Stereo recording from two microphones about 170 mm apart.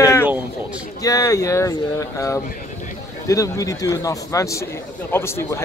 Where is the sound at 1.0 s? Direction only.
20° left (ahead or behind).